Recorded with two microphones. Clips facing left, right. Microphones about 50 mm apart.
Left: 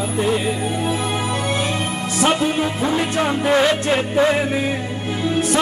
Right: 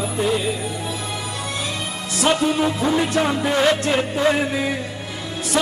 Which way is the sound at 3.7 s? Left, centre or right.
Centre.